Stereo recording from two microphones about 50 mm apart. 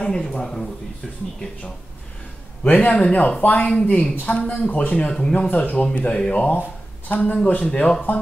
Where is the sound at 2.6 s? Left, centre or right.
Left.